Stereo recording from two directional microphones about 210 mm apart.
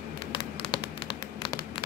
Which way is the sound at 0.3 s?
25° left (ahead or behind).